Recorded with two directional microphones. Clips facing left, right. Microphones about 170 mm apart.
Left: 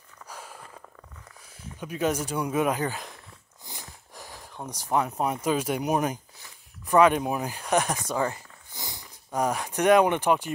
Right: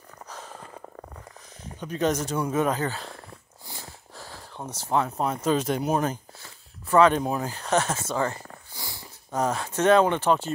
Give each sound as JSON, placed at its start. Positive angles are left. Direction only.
{"t": 0.3, "sound": "a sound", "side_deg": 10}
{"t": 1.6, "sound": "speech", "side_deg": 10}
{"t": 3.6, "sound": "wheeze", "side_deg": 15}
{"t": 4.6, "sound": "speech", "side_deg": 15}